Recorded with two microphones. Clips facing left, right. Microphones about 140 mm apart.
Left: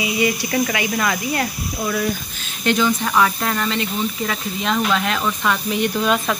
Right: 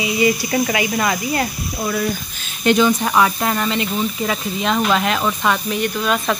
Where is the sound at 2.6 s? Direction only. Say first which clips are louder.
Right 4 dB; 15° right (ahead or behind).